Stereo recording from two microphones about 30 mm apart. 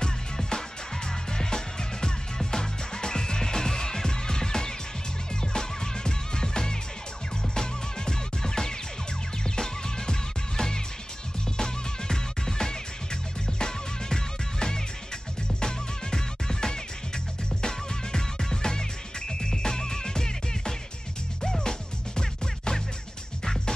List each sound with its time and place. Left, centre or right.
0.0 s music: left